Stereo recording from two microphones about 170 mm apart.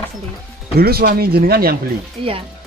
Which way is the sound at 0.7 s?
65° right (ahead or behind).